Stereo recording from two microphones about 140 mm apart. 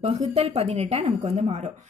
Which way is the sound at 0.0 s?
50° right (ahead or behind).